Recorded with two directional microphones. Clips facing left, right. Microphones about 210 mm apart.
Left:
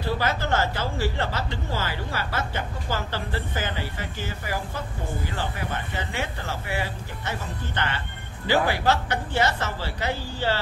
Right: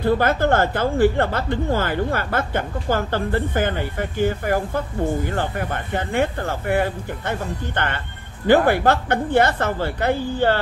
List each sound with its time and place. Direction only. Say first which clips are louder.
0.0 s a woman's voice: right 8 dB; 55° right (ahead or behind)